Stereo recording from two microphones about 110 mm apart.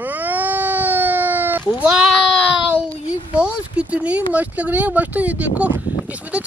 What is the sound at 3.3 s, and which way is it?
Speech, 10° right (ahead or behind).